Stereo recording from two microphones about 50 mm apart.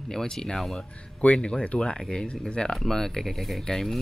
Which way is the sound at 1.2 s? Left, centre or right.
Left.